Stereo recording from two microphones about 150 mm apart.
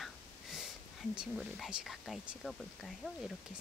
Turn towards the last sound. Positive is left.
turn(degrees=0)  # may be behind; listen again after turning